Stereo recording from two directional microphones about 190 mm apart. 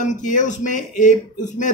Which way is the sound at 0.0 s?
40° left (ahead or behind).